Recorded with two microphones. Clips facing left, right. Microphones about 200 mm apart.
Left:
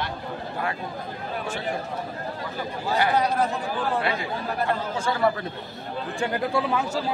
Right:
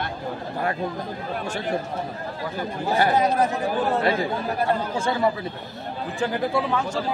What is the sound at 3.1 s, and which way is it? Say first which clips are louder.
Speech: right 2 dB; 20° right (ahead or behind).